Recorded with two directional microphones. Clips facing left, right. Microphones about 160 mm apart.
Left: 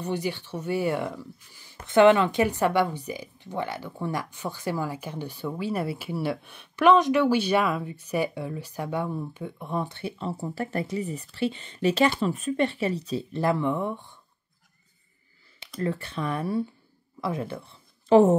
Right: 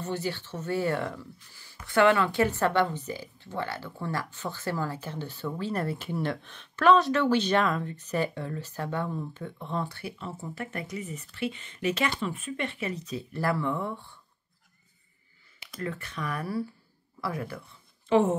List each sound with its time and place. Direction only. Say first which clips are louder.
0.0 s speech: left 3 dB; 15° left (ahead or behind)
15.8 s speech: left 5 dB; 30° left (ahead or behind)